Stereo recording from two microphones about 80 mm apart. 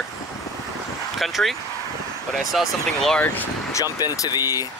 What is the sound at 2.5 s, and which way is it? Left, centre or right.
Speech, centre.